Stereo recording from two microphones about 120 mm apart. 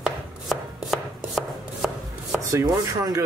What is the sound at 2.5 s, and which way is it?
Speech, 30° right (ahead or behind).